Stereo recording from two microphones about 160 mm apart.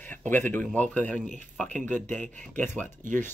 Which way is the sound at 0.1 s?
10° left (ahead or behind).